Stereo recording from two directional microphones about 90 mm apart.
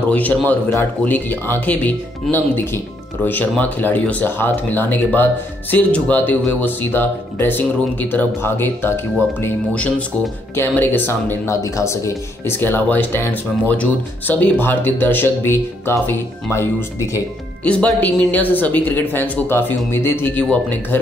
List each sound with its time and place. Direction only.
0.1 s a man's voice: 15° left (ahead or behind)
10.5 s speech: 25° left (ahead or behind)
11.5 s speech: 35° left (ahead or behind)
17.6 s speech: 15° left (ahead or behind)